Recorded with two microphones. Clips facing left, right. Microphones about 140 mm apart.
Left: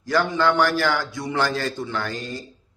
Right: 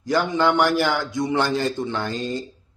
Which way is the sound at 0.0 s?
20° right (ahead or behind).